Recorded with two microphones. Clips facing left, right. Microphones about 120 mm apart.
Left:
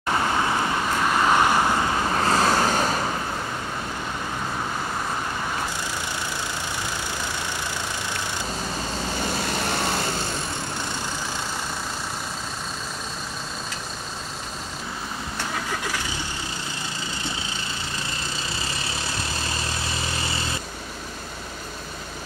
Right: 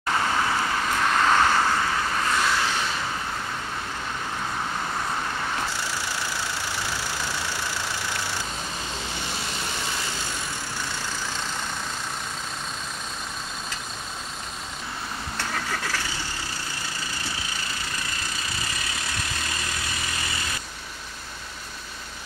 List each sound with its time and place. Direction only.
0.4 s vehicle: 20° left (ahead or behind)
2.1 s vehicle: 35° left (ahead or behind)
9.5 s vehicle: 55° left (ahead or behind)
15.5 s vehicle: 15° left (ahead or behind)
18.3 s vehicle: 30° left (ahead or behind)